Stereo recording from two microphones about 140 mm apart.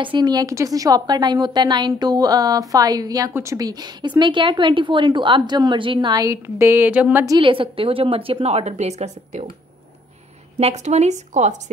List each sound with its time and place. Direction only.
0.0 s a woman's voice: 35° right (ahead or behind); by 7.2 s 10° right (ahead or behind)
7.2 s a woman's voice: 35° right (ahead or behind); by 9.5 s 55° right (ahead or behind)
10.6 s a woman's voice: 55° right (ahead or behind)